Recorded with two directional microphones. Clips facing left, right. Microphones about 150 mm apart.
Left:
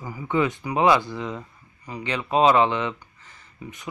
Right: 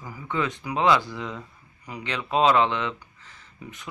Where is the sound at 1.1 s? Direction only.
5° left (ahead or behind).